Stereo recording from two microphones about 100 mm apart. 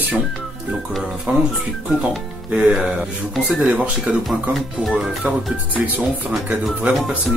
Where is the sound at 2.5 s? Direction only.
10° right (ahead or behind).